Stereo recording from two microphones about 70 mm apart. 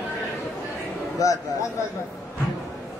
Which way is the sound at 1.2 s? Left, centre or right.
Left.